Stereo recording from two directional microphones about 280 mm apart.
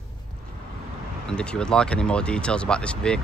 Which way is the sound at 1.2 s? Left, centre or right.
Centre.